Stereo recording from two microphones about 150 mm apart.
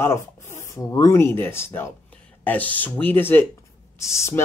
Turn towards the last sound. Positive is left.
turn(degrees=20)  # may be behind; listen again after turning